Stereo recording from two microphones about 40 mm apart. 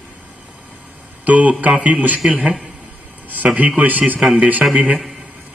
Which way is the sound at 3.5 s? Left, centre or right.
Right.